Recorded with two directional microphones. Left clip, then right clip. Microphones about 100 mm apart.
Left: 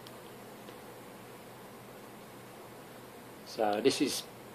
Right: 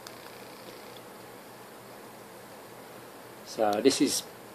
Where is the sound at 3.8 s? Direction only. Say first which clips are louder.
Right 5 dB; 60° right (ahead or behind).